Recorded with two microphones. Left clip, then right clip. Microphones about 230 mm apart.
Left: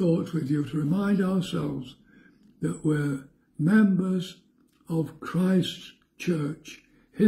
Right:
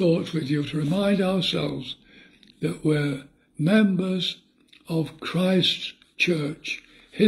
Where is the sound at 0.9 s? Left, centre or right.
Centre.